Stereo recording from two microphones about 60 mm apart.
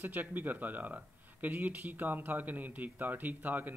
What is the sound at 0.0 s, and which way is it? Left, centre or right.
Speech, right.